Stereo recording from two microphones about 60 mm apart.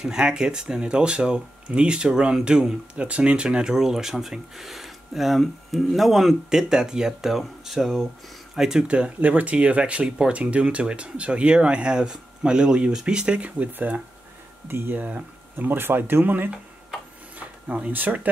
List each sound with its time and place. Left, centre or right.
0.0 s speech: centre; by 16.4 s right
17.4 s speech: right